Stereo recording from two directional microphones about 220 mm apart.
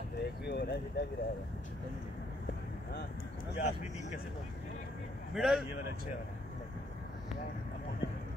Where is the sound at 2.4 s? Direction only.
45° left (ahead or behind).